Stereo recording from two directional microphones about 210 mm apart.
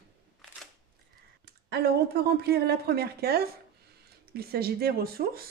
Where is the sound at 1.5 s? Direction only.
50° right (ahead or behind).